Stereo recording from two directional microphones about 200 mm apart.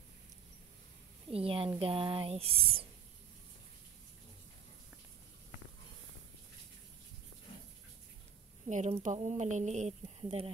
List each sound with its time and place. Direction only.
1.3 s speech: 30° right (ahead or behind)
8.6 s speech: 35° right (ahead or behind)